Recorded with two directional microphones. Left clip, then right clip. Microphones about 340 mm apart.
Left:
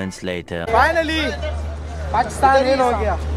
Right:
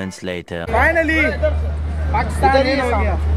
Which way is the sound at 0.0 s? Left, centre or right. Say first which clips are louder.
Even; centre.